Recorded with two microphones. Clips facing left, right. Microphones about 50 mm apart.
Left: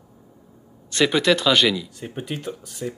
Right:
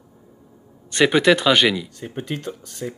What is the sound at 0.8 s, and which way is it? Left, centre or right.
Speech, centre.